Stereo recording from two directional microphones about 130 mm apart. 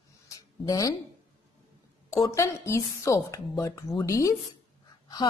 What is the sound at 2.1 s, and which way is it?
A woman's voice, 25° left (ahead or behind).